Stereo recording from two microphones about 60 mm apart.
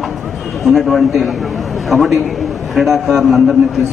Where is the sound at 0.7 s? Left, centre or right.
Centre.